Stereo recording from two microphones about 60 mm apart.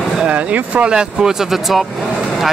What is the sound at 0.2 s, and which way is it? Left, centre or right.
Speech, right.